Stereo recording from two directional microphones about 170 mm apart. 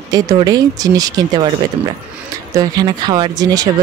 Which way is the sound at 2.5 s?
25° right (ahead or behind).